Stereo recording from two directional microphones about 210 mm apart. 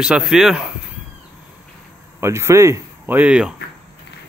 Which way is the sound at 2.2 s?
10° right (ahead or behind).